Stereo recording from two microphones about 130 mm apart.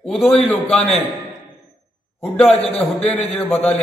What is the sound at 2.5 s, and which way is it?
Speech, 50° left (ahead or behind).